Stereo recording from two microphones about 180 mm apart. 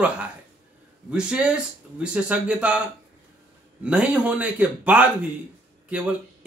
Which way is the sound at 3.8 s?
5° right (ahead or behind).